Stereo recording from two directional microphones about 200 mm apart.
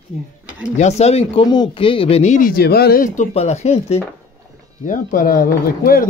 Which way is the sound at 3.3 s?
35° left (ahead or behind).